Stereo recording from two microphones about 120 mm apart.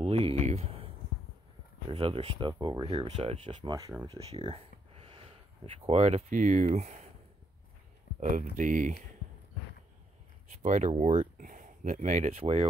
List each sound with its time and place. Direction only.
0.0 s a sound: 55° right (ahead or behind)
1.9 s speech: 50° right (ahead or behind)
2.9 s speech: 60° right (ahead or behind)
4.5 s a sound: 50° right (ahead or behind)
5.8 s speech: 60° right (ahead or behind); by 7.1 s 80° right
8.2 s speech: 80° right
10.6 s speech: 90° right
10.9 s speech: 65° right (ahead or behind)